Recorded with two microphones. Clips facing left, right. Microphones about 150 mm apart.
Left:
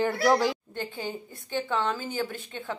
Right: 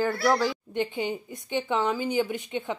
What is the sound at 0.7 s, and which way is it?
A woman's voice, 20° right (ahead or behind).